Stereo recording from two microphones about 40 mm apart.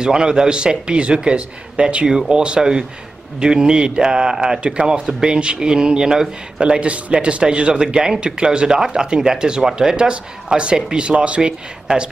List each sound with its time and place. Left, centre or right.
0.0 s a man's voice: centre